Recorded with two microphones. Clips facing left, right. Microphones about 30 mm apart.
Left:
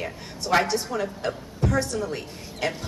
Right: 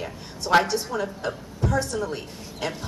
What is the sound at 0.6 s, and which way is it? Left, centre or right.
Speech, centre.